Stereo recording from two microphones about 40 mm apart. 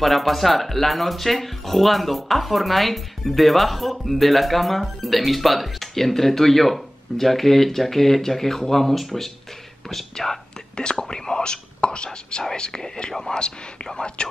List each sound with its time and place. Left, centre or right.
0.0 s speech: centre
10.8 s speech: left